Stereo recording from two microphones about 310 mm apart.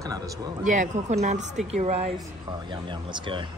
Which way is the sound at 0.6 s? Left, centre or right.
Right.